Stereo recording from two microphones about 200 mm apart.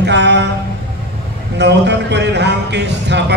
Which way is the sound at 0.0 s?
60° right (ahead or behind).